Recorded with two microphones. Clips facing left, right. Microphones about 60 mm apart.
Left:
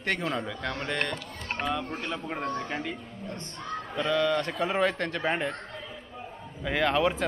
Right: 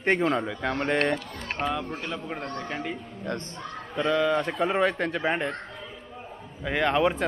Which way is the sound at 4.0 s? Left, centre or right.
Centre.